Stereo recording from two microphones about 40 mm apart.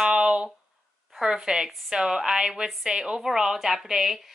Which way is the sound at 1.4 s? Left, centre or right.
Centre.